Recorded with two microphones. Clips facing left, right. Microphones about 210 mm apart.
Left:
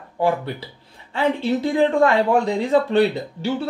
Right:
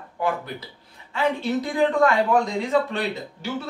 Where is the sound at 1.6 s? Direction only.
30° left (ahead or behind).